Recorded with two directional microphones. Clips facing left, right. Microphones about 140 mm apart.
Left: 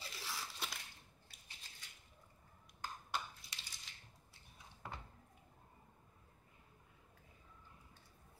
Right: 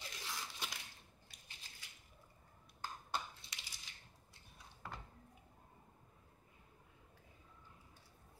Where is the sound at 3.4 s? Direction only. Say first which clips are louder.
Even; 25° right (ahead or behind).